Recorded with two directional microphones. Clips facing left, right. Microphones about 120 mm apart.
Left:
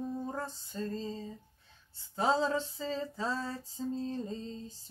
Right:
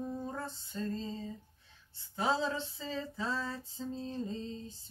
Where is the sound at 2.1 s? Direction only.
40° left (ahead or behind).